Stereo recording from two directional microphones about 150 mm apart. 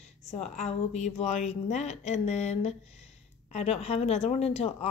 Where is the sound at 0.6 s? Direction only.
50° left (ahead or behind).